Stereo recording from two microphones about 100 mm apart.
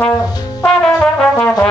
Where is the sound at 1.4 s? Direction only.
20° left (ahead or behind).